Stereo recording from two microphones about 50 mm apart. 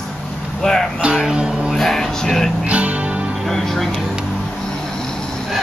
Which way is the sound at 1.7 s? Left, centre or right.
Centre.